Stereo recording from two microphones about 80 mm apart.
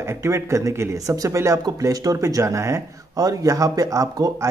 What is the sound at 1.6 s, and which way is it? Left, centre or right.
Speech, right.